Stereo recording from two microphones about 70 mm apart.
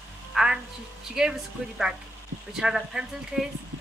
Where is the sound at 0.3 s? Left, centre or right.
Centre.